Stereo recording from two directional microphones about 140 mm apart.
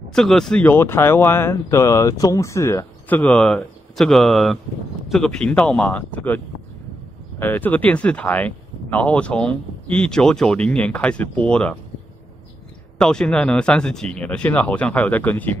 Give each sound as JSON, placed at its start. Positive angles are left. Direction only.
{"t": 0.1, "sound": "speech", "side_deg": 5}
{"t": 0.7, "sound": "speech", "side_deg": 15}
{"t": 3.2, "sound": "speech", "side_deg": 10}
{"t": 13.0, "sound": "speech", "side_deg": 5}